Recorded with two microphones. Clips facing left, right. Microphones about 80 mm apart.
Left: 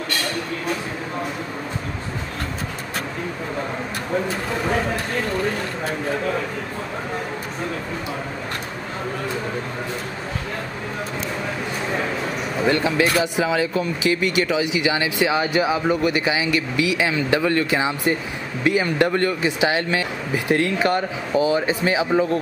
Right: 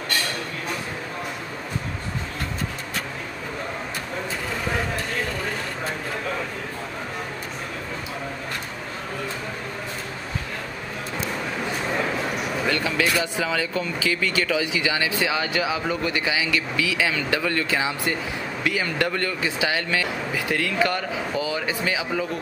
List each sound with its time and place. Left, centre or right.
12.6 s speech: left